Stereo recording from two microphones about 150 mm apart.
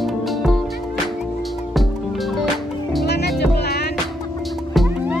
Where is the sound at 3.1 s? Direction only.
90° left.